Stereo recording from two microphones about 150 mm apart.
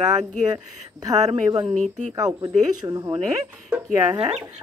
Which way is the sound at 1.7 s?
50° right (ahead or behind).